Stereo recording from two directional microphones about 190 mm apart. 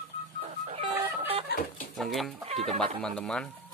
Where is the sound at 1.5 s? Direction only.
60° left (ahead or behind).